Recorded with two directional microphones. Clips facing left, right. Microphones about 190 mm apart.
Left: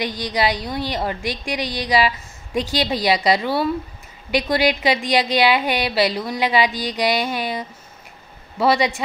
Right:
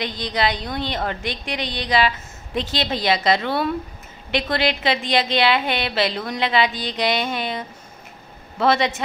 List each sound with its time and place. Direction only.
0.0 s a woman's voice: 10° left (ahead or behind)